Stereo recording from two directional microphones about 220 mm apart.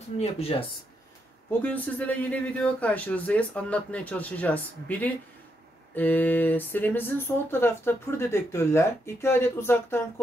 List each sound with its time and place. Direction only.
0.2 s speech: 25° left (ahead or behind)
1.6 s speech: 5° left (ahead or behind)